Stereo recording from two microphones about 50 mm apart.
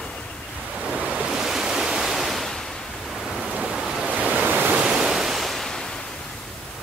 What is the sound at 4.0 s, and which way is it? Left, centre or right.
Waves, right.